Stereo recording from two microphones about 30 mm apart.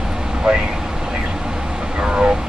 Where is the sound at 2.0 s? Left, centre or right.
Right.